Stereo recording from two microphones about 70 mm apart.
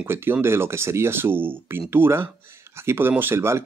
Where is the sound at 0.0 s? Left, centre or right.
Right.